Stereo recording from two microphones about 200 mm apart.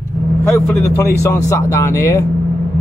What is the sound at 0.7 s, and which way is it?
Speech, 15° left (ahead or behind).